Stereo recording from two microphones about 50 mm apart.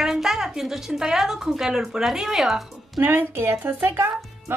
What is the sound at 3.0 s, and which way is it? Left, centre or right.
A woman's voice, right.